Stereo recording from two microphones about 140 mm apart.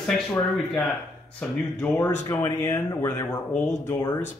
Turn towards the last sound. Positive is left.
turn(degrees=20)  # may be behind; listen again after turning